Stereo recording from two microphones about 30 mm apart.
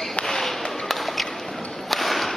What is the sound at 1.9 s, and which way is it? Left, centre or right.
Whip, centre.